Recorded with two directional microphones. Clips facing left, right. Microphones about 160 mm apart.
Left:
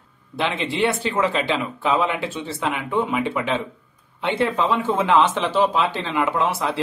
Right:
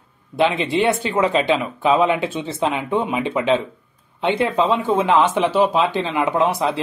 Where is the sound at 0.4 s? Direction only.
15° right (ahead or behind).